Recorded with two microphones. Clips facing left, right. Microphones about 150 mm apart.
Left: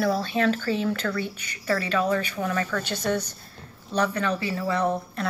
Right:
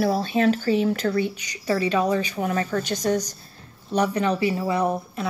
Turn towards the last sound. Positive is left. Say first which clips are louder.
# right 1 dB
turn(degrees=-10)  # may be behind; listen again after turning